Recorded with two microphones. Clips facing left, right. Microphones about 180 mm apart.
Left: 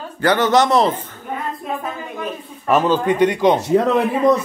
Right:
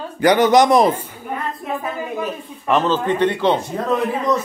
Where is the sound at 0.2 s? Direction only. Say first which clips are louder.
Right 2 dB; 15° right (ahead or behind).